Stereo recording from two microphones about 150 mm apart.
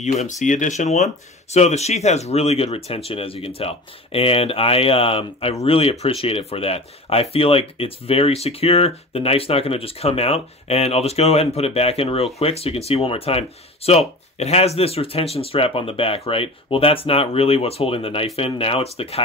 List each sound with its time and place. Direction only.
0.0 s speech: 50° left (ahead or behind)